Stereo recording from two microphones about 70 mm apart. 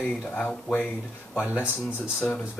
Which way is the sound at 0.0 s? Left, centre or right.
Centre.